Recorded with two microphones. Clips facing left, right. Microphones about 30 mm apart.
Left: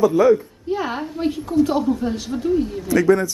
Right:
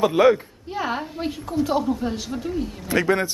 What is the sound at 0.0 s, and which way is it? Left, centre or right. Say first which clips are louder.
Speech: left 2 dB; right.